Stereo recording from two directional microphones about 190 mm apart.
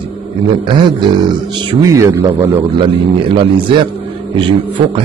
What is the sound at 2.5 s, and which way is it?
A man's voice, 25° right (ahead or behind).